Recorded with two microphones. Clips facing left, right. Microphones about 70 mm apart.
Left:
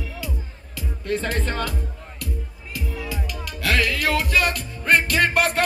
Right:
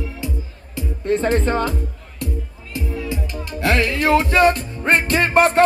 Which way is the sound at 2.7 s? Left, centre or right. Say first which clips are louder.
Right 5 dB; right.